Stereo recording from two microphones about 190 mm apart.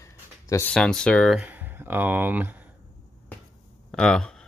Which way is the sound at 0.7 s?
5° left (ahead or behind).